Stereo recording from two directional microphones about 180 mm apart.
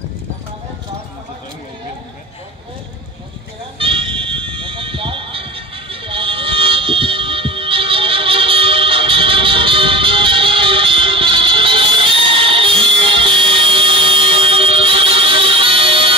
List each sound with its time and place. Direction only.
3.7 s fire alarm: 30° right (ahead or behind)